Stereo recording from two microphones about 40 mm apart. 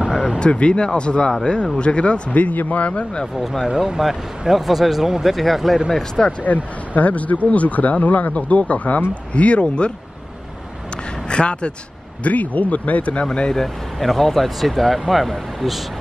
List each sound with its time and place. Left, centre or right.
0.4 s speech: left
2.3 s speech: left
2.9 s speech: left
3.6 s speech: centre
6.2 s speech: centre
7.0 s speech: left
11.2 s speech: left
12.2 s speech: left
13.6 s speech: centre